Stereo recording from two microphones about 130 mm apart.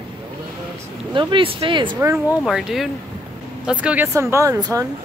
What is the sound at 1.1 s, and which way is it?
Speech, 40° right (ahead or behind).